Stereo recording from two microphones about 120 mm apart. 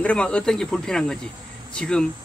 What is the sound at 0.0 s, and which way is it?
A man's voice, 10° left (ahead or behind).